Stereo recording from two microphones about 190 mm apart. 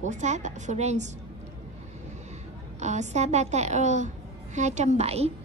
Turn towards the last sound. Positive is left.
turn(degrees=-35)  # may be behind; listen again after turning